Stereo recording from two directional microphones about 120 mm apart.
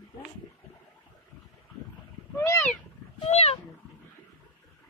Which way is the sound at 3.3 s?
60° left (ahead or behind).